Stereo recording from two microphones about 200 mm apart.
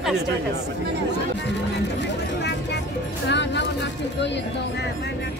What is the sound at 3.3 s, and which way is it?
Speech, 60° left (ahead or behind).